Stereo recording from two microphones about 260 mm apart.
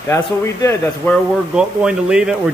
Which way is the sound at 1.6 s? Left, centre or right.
Centre.